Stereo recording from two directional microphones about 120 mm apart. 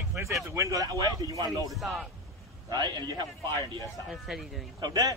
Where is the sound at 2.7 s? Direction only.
35° right (ahead or behind).